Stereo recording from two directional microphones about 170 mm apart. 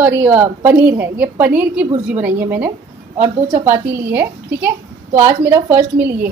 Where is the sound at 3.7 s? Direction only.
15° right (ahead or behind).